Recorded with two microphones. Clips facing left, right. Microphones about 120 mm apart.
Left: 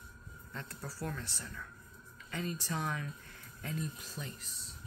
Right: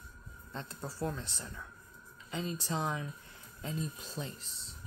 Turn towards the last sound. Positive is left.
turn(degrees=-25)  # may be behind; listen again after turning